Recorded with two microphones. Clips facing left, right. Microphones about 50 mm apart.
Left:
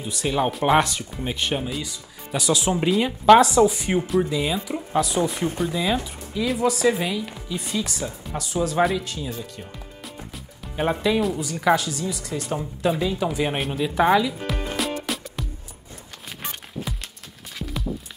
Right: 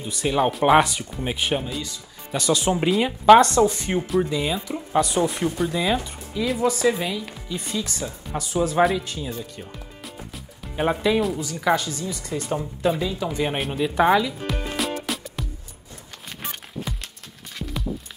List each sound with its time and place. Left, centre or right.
0.0 s speech: centre
1.6 s speech: centre
10.0 s music: centre
11.6 s speech: centre
13.2 s music: centre
16.9 s music: centre